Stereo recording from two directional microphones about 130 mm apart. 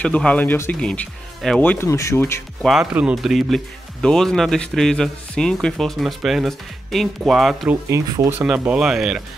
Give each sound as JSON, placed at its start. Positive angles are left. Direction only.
{"t": 0.0, "sound": "speech", "side_deg": 10}
{"t": 1.6, "sound": "speech", "side_deg": 15}
{"t": 2.6, "sound": "speech", "side_deg": -5}
{"t": 7.9, "sound": "speech", "side_deg": -30}
{"t": 8.3, "sound": "speech", "side_deg": -10}